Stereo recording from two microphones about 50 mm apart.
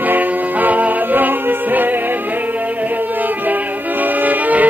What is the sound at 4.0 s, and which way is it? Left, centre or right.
Music, right.